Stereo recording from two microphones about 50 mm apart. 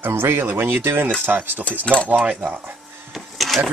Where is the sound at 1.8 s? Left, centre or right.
Left.